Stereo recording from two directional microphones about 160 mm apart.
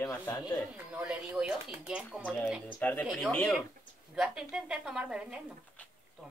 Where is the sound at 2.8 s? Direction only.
10° left (ahead or behind).